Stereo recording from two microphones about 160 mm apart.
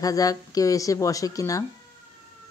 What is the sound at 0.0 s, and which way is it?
Speech, 20° left (ahead or behind).